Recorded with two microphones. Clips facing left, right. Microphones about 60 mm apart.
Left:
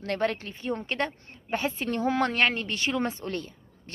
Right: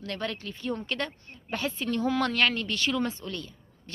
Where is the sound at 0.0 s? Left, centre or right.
Left.